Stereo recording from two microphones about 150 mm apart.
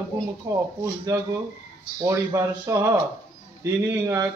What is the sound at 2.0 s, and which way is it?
Speech, 20° right (ahead or behind).